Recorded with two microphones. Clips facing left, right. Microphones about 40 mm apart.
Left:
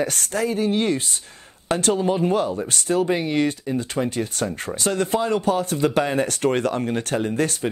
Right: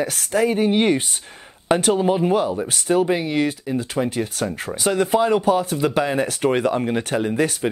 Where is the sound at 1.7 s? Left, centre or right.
Centre.